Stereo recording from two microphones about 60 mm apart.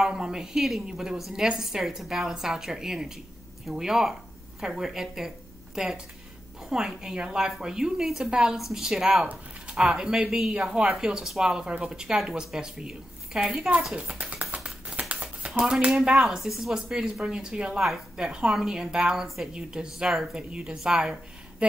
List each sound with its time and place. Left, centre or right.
0.0 s a woman's voice: centre
14.5 s a sound: right; by 16.1 s centre
16.1 s a woman's voice: centre